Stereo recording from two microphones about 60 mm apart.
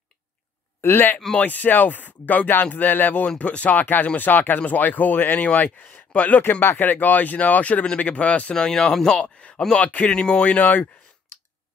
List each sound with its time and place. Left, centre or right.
0.7 s speech: left
8.5 s speech: centre
10.1 s speech: centre